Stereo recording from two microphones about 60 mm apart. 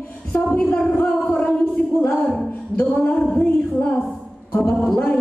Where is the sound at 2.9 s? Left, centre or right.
Left.